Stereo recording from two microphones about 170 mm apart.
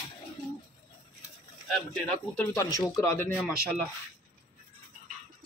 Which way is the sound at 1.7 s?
5° left (ahead or behind).